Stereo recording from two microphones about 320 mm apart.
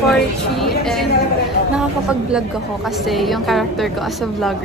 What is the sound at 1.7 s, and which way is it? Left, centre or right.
A woman's voice, centre.